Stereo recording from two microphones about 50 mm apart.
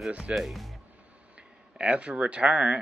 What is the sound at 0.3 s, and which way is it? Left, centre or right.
Speech, centre.